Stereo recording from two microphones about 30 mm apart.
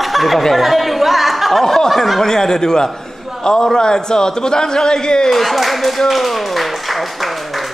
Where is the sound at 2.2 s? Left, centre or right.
Centre.